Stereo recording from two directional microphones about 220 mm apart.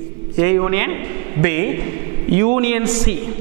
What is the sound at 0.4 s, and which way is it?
A man's voice, 15° right (ahead or behind).